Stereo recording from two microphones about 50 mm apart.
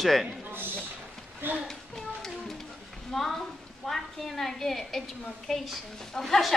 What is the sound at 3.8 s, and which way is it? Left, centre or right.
A woman's voice, centre.